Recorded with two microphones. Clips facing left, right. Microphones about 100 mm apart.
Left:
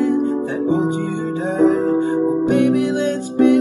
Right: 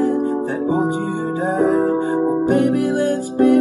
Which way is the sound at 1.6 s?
50° right (ahead or behind).